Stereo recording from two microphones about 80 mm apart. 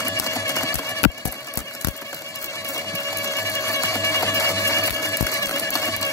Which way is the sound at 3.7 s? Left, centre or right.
Left.